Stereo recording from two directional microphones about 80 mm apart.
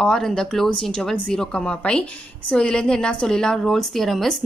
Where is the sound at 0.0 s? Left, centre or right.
Centre.